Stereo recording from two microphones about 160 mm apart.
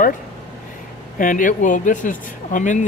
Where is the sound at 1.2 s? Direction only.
55° left (ahead or behind).